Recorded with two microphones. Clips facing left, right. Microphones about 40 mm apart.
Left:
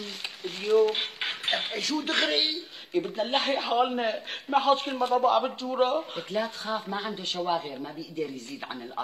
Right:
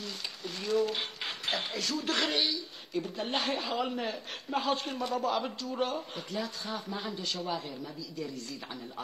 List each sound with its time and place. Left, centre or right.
0.4 s speech: left